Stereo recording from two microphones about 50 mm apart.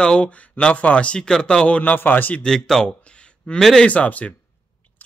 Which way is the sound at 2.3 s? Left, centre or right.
Centre.